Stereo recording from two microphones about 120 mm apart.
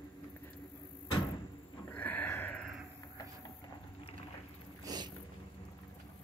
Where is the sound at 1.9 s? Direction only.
15° left (ahead or behind).